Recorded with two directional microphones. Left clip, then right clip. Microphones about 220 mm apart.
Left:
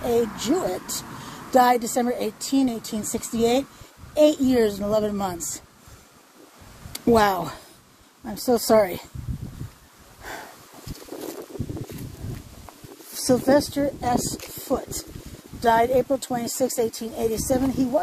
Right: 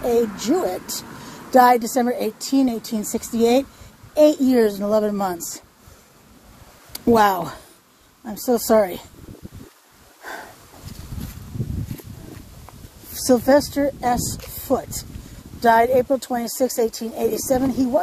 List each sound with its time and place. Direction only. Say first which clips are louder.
0.0 s a woman's voice: right 3 dB; 20° right (ahead or behind)
6.9 s a woman's voice: right 3 dB; 10° right (ahead or behind)
13.1 s a woman's voice: right 4 dB; 30° right (ahead or behind)
14.6 s a sound: right 5 dB; 25° right (ahead or behind)
15.6 s a woman's voice: right 4 dB; 20° right (ahead or behind)